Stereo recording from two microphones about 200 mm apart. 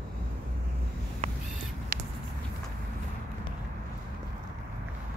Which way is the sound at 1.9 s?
45° right (ahead or behind).